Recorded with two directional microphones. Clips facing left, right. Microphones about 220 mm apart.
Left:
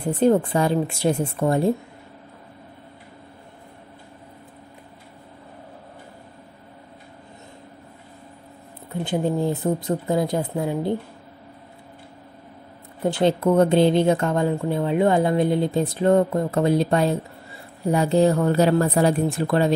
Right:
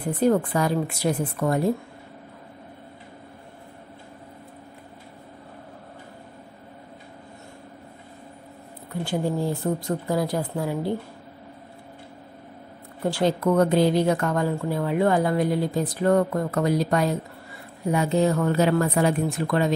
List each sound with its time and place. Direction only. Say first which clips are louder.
0.0 s speech: left 3 dB; 25° left (ahead or behind)
9.0 s speech: left 3 dB; 20° left (ahead or behind)
13.0 s speech: left 3 dB; 25° left (ahead or behind)